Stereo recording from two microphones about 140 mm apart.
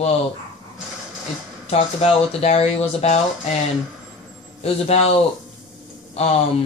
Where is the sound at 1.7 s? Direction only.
45° left (ahead or behind).